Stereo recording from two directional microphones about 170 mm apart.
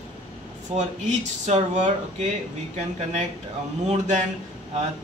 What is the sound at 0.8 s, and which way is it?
Speech, 45° right (ahead or behind).